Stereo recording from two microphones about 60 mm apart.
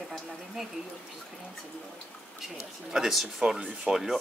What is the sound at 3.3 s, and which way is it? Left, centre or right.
Speech, centre.